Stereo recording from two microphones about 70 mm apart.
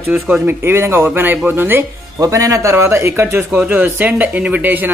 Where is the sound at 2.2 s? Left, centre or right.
Right.